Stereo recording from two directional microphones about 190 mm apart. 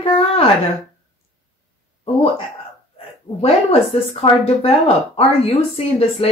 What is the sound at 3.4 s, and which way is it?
Speech, 30° left (ahead or behind).